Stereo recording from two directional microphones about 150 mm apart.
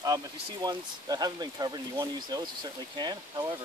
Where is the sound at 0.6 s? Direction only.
25° right (ahead or behind).